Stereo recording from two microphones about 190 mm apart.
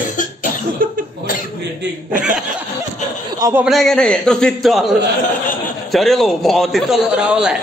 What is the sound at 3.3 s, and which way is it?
Speech, 15° right (ahead or behind).